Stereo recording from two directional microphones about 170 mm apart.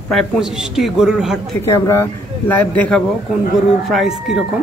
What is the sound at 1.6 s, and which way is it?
Speech, 15° left (ahead or behind).